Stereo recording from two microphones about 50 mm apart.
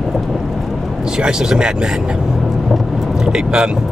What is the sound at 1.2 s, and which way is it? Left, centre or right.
Speech, centre.